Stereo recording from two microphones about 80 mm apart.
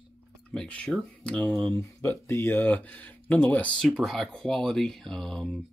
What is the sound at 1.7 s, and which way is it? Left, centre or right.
Speech, left.